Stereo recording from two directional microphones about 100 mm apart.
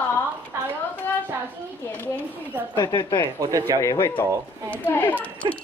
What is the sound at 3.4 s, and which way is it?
Speech, 40° right (ahead or behind).